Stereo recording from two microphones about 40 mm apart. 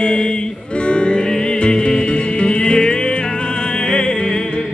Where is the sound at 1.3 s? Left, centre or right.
Left.